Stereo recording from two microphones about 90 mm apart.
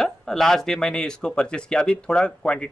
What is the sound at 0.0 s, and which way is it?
Speech, 5° left (ahead or behind).